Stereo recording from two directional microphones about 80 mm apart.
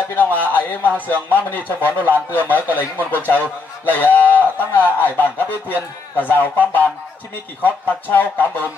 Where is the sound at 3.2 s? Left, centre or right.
Left.